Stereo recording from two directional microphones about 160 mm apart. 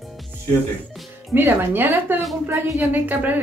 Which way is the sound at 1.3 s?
15° right (ahead or behind).